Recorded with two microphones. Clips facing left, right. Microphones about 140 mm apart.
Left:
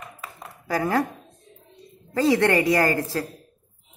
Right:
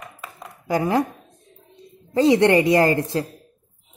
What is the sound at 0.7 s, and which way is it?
Speech, 20° right (ahead or behind).